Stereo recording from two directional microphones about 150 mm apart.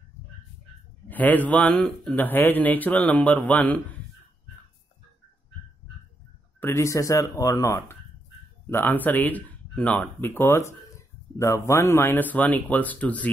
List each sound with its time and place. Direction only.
1.0 s a man's voice: 10° left (ahead or behind)
6.6 s a man's voice: 20° left (ahead or behind)